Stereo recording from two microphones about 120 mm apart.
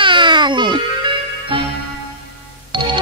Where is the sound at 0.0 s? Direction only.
40° right (ahead or behind).